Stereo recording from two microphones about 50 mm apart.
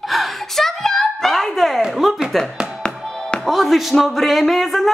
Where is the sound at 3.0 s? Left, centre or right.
Centre.